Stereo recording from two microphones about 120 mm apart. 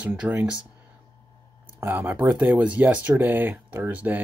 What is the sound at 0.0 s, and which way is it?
Speech, 15° right (ahead or behind).